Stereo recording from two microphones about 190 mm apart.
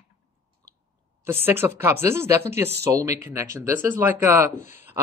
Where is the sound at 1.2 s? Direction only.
10° right (ahead or behind).